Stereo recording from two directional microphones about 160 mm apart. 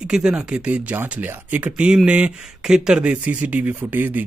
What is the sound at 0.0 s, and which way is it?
Speech, 5° right (ahead or behind).